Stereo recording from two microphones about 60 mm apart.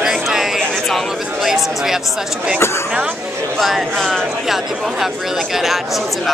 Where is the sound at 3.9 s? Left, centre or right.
Centre.